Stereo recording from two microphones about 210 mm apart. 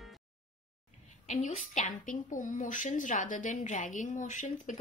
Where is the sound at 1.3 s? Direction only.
35° left (ahead or behind).